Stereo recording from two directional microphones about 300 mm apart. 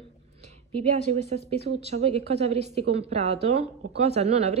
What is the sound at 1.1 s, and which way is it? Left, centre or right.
Speech, right.